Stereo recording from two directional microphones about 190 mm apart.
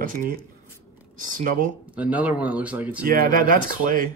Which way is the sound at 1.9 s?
10° right (ahead or behind).